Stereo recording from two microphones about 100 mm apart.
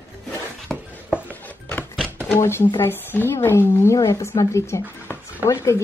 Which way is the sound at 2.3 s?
25° left (ahead or behind).